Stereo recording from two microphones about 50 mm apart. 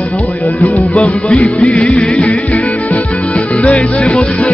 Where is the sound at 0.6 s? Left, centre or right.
Left.